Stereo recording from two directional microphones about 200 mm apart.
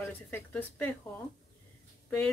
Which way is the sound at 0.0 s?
10° left (ahead or behind).